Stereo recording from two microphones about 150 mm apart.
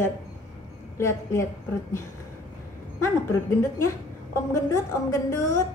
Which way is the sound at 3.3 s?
20° left (ahead or behind).